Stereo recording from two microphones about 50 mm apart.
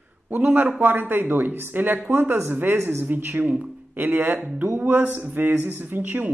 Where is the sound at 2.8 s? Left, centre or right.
Right.